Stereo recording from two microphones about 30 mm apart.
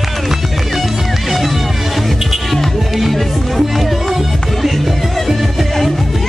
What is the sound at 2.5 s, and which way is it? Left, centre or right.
Music, centre.